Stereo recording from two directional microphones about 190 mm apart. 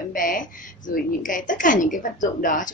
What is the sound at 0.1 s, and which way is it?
A woman's voice, 45° left (ahead or behind).